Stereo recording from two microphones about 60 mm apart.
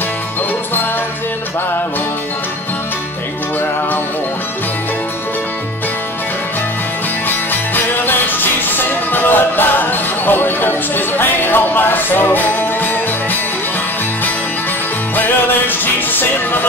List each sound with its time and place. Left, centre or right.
7.2 s music: left
15.1 s music: left